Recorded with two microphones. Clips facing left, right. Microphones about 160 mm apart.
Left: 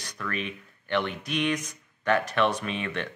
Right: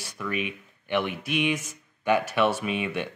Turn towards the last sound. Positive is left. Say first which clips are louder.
# right 3 dB
turn(degrees=-10)  # may be behind; listen again after turning